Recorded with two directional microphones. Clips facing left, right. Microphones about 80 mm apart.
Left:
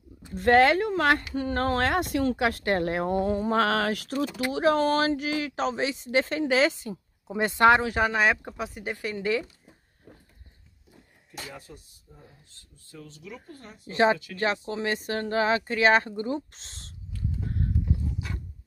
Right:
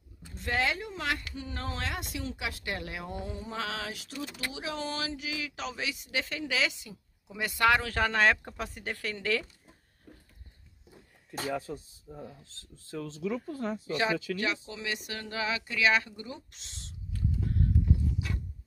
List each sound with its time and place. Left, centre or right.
0.3 s speech: left; by 9.5 s centre
10.1 s a sound: centre
12.2 s speech: right
13.9 s speech: left